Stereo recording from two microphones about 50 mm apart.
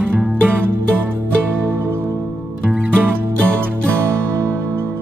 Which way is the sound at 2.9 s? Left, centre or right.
Right.